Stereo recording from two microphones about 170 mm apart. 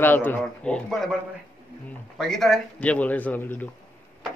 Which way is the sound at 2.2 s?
Centre (ahead or behind).